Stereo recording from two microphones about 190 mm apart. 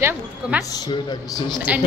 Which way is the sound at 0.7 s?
20° left (ahead or behind).